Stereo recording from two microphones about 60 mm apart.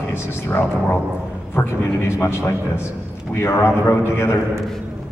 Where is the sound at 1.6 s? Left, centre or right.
Left.